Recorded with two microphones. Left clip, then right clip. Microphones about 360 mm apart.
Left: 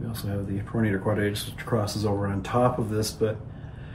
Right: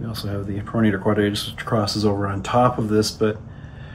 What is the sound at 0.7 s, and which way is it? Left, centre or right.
Speech, right.